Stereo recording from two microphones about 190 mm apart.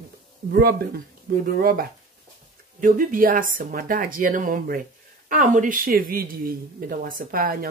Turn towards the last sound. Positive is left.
turn(degrees=-50)  # may be behind; listen again after turning